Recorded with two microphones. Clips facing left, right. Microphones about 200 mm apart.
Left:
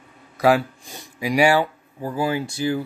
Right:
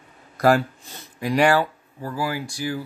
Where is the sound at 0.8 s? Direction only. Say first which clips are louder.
Left 1 dB; 15° left (ahead or behind).